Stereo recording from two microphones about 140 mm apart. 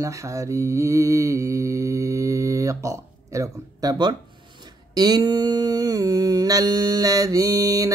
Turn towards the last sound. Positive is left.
turn(degrees=-25)  # may be behind; listen again after turning